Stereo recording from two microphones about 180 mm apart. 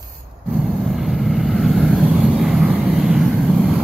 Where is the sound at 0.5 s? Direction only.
Centre (ahead or behind).